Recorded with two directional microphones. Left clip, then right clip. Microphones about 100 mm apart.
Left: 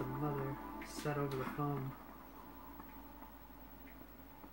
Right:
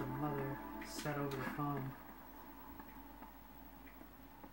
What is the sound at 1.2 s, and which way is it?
Speech, 35° right (ahead or behind).